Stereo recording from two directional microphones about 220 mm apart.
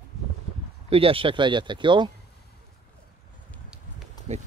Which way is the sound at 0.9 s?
25° right (ahead or behind).